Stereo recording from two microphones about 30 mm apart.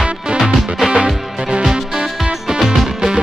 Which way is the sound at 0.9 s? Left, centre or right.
Right.